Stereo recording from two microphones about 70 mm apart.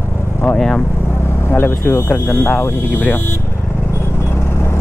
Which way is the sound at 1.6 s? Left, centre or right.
Left.